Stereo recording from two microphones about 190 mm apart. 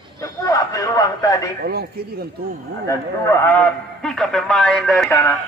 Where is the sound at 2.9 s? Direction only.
15° left (ahead or behind).